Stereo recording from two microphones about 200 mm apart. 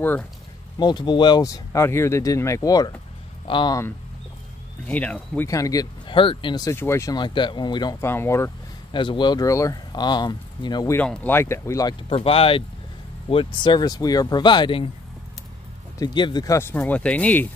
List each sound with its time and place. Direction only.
0.7 s speech: 20° left (ahead or behind)
4.8 s speech: 5° left (ahead or behind)
8.9 s speech: 25° left (ahead or behind)
11.0 s speech: 10° left (ahead or behind)
12.1 s speech: 30° left (ahead or behind)
16.0 s speech: 20° left (ahead or behind)